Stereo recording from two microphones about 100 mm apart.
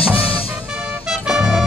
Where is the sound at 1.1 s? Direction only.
5° right (ahead or behind).